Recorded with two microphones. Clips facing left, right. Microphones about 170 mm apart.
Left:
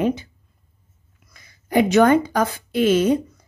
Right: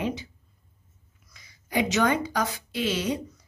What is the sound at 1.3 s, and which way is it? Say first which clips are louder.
A woman's voice: left 9 dB; 55° left (ahead or behind).